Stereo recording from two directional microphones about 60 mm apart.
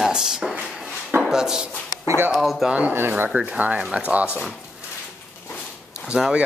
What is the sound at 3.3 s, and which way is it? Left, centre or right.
Speech, right.